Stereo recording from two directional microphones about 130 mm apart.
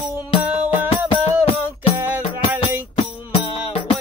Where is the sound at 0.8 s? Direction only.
45° left (ahead or behind).